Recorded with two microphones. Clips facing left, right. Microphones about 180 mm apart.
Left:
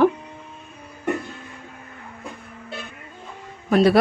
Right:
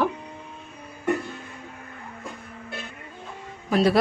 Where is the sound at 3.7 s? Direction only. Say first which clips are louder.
Left 4 dB; 60° left (ahead or behind).